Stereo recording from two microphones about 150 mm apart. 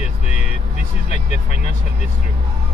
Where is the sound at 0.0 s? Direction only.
45° left (ahead or behind).